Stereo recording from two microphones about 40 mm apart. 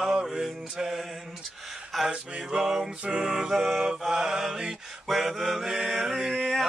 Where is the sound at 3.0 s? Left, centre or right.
Right.